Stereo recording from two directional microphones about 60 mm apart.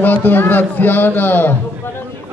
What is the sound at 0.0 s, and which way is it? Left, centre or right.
A man's voice, left.